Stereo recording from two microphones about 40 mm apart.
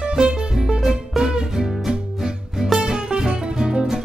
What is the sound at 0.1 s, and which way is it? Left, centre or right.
Music, centre.